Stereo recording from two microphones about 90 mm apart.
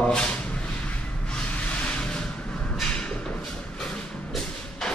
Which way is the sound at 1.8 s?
10° left (ahead or behind).